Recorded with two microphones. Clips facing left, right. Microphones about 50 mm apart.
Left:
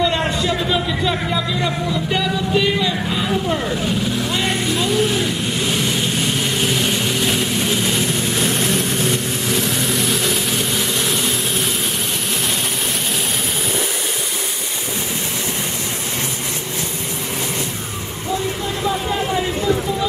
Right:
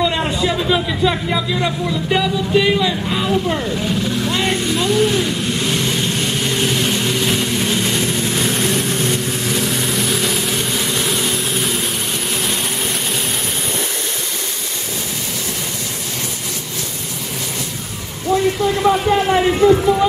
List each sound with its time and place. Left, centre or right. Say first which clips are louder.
0.0 s speech: right 1 dB; centre
4.2 s vehicle: right 2 dB; centre
18.9 s speech: right 6 dB; right